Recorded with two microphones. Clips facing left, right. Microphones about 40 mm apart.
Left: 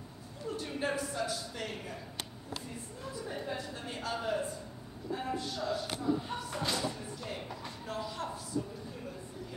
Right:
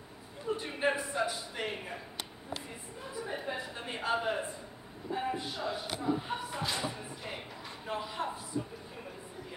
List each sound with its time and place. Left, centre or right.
0.5 s speech: right
2.5 s a sound: centre
5.1 s speech: right